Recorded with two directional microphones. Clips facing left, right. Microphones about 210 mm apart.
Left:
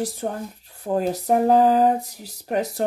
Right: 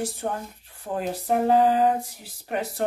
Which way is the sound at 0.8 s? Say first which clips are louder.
Left 6 dB; 40° left (ahead or behind).